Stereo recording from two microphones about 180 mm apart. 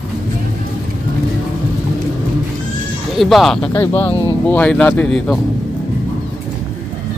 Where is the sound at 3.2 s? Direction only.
Centre (ahead or behind).